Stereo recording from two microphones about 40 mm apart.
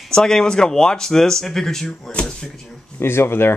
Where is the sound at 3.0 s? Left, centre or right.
Left.